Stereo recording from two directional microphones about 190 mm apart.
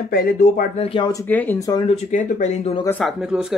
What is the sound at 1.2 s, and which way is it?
Speech, 10° left (ahead or behind).